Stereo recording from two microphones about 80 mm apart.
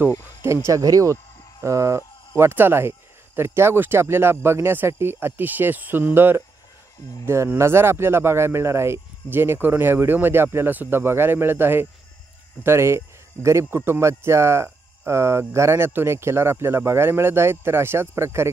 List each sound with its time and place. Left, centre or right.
0.5 s speech: right
7.5 s speech: right